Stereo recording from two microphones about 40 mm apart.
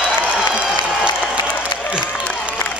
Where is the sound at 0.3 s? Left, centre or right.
Right.